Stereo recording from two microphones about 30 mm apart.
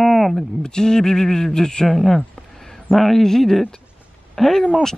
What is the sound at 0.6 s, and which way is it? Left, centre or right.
A man's voice, left.